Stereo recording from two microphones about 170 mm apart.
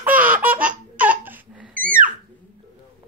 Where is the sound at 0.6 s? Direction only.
10° right (ahead or behind).